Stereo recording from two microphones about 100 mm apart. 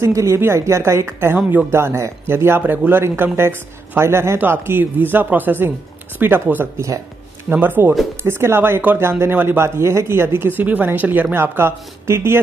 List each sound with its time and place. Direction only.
0.0 s speech: 30° right (ahead or behind)